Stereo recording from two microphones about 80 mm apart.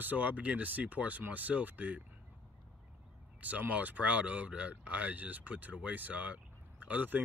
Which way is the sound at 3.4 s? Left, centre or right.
Centre.